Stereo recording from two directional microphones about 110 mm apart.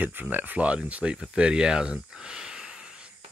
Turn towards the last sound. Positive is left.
turn(degrees=-5)  # may be behind; listen again after turning